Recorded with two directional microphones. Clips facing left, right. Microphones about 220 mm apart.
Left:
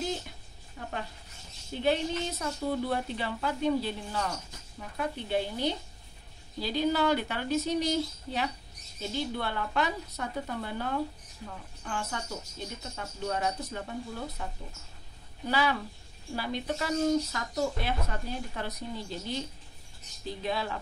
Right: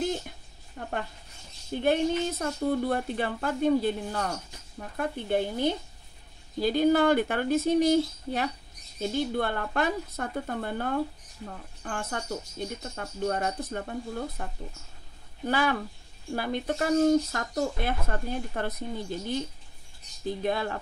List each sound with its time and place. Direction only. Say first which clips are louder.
1.8 s speech: right 4 dB; 50° right (ahead or behind)